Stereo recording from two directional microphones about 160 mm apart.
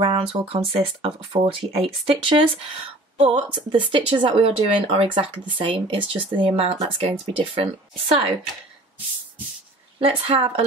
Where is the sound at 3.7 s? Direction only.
30° right (ahead or behind).